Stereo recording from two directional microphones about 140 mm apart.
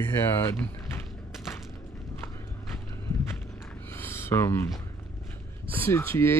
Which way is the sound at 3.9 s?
15° left (ahead or behind).